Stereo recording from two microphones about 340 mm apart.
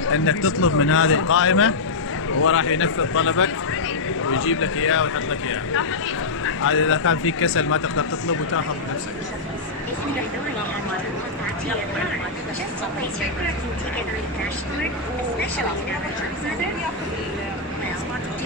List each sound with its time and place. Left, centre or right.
0.0 s speech: left